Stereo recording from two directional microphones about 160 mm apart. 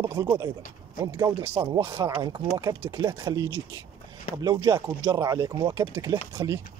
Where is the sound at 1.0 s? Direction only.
20° right (ahead or behind).